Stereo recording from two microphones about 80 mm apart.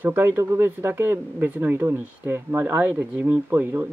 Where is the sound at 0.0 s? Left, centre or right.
Right.